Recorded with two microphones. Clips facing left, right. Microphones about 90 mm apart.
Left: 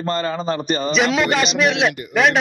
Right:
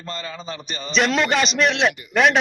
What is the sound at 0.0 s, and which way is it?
Speech, 45° left (ahead or behind).